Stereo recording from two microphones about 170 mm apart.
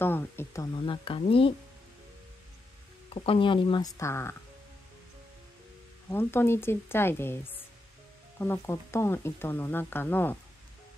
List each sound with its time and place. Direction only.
0.0 s speech: 10° left (ahead or behind)
0.7 s speech: 30° left (ahead or behind)
3.1 s speech: 35° left (ahead or behind)
4.0 s speech: 15° left (ahead or behind)
6.0 s speech: 15° left (ahead or behind)